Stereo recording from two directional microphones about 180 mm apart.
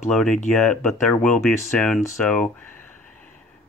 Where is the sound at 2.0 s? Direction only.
10° left (ahead or behind).